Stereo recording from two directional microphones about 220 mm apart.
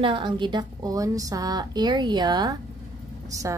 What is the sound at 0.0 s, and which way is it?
A woman's voice, 20° right (ahead or behind).